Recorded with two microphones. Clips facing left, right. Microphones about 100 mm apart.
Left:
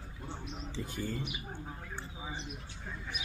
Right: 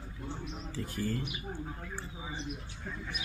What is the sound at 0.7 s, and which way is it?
Speech, 15° left (ahead or behind).